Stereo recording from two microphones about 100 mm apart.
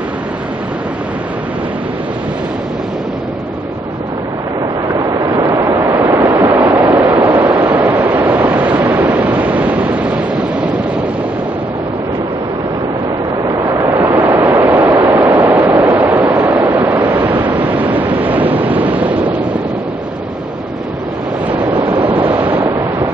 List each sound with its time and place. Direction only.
4.9 s waves: 35° right (ahead or behind); by 6.9 s 15° right (ahead or behind)
6.9 s vehicle: 30° right (ahead or behind)
7.2 s vehicle: 15° right (ahead or behind)
13.9 s vehicle: 20° right (ahead or behind)
16.3 s waves: 15° right (ahead or behind)
21.5 s waves: 15° right (ahead or behind)